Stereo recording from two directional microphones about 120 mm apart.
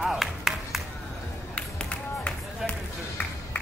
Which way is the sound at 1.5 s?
10° left (ahead or behind).